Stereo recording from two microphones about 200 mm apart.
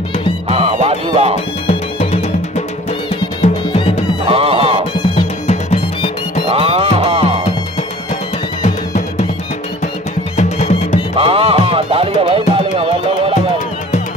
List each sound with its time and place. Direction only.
0.5 s music: 30° right (ahead or behind)
4.3 s music: 30° right (ahead or behind)
4.9 s music: 25° left (ahead or behind)
6.4 s music: 30° right (ahead or behind)
10.3 s music: 35° left (ahead or behind)
11.1 s music: 30° right (ahead or behind)